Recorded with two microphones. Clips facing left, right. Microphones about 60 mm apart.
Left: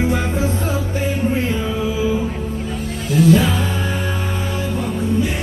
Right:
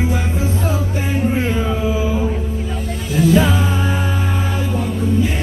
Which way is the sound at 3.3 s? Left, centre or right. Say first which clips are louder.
Right 1 dB; centre.